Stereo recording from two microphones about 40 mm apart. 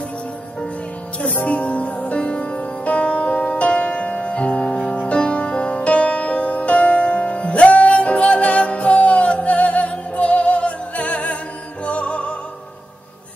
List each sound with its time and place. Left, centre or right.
1.2 s music: left